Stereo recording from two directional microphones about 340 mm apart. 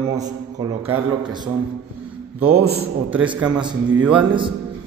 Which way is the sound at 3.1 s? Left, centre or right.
Centre.